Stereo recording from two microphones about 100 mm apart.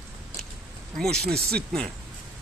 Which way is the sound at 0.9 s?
5° left (ahead or behind).